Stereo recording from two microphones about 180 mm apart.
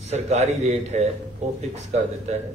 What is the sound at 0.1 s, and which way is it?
Speech, 40° right (ahead or behind).